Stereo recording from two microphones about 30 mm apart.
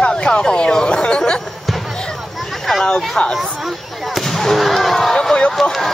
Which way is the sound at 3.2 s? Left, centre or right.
Left.